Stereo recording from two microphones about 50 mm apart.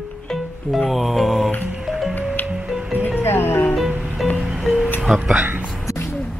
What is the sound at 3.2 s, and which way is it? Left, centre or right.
Music, left.